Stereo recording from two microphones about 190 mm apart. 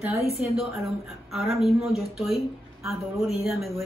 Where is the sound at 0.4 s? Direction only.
Centre (ahead or behind).